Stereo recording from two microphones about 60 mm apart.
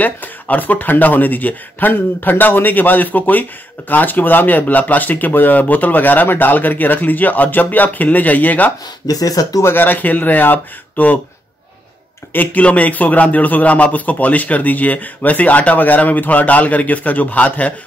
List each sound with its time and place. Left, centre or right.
0.0 s a man's voice: left
9.0 s speech: left
9.6 s a man's voice: left
12.3 s a man's voice: left